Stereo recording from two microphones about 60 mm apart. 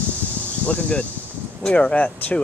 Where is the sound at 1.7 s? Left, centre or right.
Centre.